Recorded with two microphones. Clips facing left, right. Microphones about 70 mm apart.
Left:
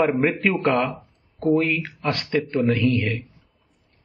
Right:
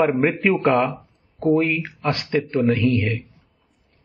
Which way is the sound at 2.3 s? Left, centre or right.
Centre.